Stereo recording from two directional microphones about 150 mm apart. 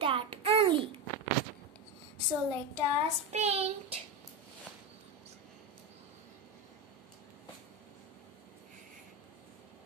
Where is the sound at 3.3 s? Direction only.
45° right (ahead or behind).